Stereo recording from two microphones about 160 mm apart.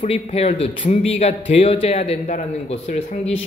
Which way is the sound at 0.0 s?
40° left (ahead or behind).